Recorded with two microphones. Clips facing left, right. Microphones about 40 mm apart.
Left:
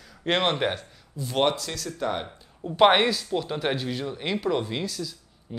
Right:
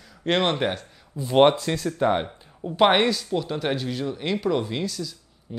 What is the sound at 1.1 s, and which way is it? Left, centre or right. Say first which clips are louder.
Speech: right 7 dB; right.